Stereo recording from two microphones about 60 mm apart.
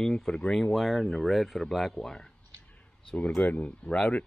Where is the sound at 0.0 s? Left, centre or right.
Centre.